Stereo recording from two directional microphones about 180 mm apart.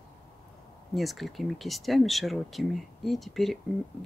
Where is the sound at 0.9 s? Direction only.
Centre (ahead or behind).